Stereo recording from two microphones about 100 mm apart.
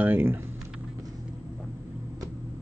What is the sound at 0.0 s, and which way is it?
Speech, 20° right (ahead or behind).